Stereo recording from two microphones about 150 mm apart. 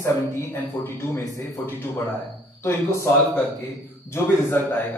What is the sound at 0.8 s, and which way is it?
Speech, 15° left (ahead or behind).